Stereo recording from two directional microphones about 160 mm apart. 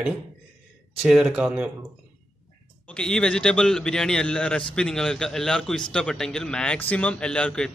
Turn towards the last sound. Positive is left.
turn(degrees=5)  # may be behind; listen again after turning